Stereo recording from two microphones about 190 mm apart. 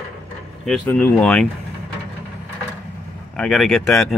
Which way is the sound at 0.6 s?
5° left (ahead or behind).